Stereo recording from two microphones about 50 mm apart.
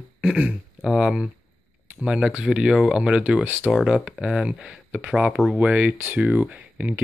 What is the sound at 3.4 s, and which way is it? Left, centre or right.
Speech, right.